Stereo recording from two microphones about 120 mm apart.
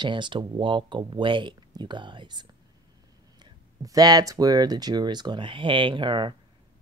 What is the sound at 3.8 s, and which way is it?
Speech, 30° right (ahead or behind).